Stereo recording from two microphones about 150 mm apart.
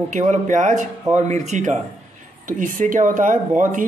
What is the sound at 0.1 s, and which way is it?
Speech, 55° right (ahead or behind).